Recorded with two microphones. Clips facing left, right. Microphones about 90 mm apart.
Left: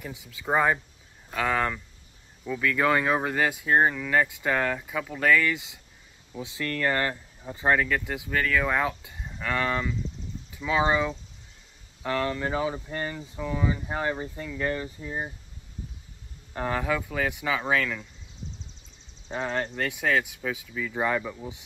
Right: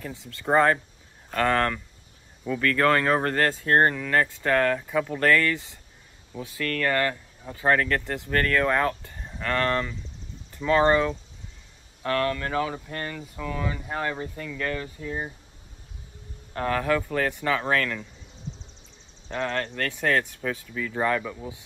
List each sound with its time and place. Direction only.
0.0 s speech: 10° left (ahead or behind)
16.5 s speech: 15° left (ahead or behind)
19.2 s speech: 10° left (ahead or behind)